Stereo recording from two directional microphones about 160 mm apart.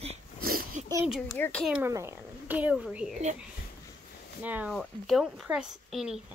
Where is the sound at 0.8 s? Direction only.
45° right (ahead or behind).